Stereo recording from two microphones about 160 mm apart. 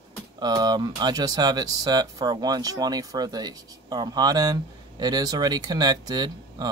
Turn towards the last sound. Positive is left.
turn(degrees=-25)  # may be behind; listen again after turning